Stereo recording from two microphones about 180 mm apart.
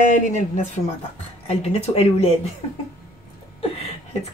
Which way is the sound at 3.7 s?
35° left (ahead or behind).